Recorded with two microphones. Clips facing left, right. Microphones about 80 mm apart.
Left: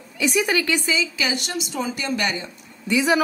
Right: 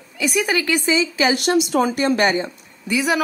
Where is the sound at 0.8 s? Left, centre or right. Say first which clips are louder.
Right 5 dB; right.